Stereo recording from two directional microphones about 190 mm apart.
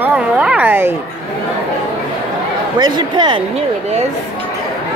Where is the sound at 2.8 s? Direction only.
20° right (ahead or behind).